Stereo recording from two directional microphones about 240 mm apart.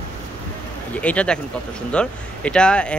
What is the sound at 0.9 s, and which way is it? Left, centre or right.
Speech, centre.